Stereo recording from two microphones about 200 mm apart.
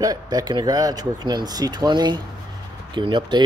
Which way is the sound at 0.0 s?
20° right (ahead or behind).